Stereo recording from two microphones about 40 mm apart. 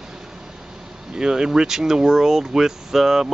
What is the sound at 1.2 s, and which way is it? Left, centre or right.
Speech, centre.